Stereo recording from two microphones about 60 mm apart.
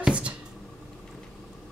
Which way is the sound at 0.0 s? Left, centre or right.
Centre.